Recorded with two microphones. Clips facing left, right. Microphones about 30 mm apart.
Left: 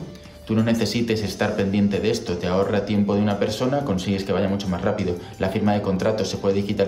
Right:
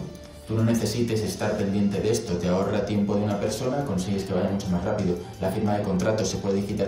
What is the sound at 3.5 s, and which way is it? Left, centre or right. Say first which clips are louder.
Speech: left 4 dB; left.